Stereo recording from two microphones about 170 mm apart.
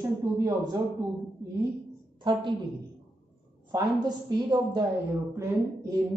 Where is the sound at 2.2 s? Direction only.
30° right (ahead or behind).